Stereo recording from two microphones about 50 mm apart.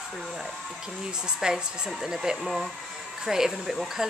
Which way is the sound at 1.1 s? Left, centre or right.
Centre.